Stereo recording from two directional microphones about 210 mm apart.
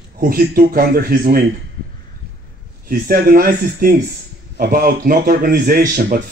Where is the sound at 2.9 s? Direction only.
45° right (ahead or behind).